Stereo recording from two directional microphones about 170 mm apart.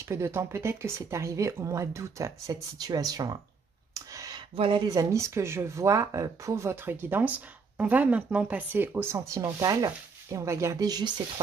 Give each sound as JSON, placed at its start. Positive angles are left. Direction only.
{"t": 0.1, "sound": "speech", "side_deg": -15}
{"t": 3.9, "sound": "a sound", "side_deg": -20}
{"t": 4.6, "sound": "speech", "side_deg": -25}